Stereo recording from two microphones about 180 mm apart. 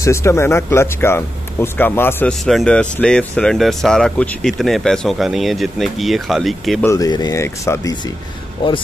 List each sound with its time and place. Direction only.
0.0 s speech: 15° left (ahead or behind)
6.9 s speech: 20° left (ahead or behind)